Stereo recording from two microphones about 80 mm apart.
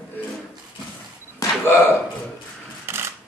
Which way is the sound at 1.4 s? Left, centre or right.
Left.